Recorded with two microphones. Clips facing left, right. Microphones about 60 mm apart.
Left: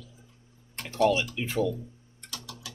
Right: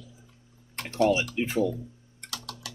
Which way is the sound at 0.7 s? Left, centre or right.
Right.